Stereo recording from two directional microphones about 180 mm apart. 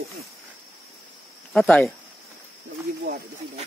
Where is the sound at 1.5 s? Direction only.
5° left (ahead or behind).